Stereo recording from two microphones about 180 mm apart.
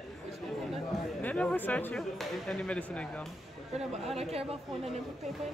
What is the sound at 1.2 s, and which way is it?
Speech, 5° left (ahead or behind).